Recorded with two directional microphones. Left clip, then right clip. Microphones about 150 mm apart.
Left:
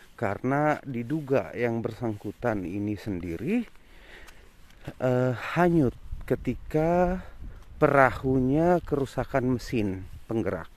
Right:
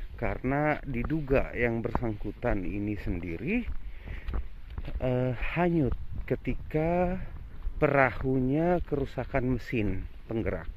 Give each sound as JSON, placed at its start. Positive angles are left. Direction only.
{"t": 0.2, "sound": "speech", "side_deg": 30}
{"t": 4.8, "sound": "speech", "side_deg": 45}
{"t": 6.3, "sound": "speech", "side_deg": 35}